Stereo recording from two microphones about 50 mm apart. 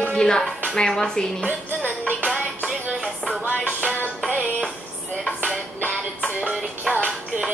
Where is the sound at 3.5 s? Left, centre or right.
Left.